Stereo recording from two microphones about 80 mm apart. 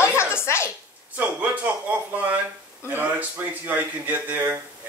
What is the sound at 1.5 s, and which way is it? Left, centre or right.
Speech, right.